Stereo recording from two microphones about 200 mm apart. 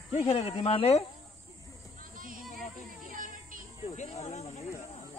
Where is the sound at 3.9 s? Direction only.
35° left (ahead or behind).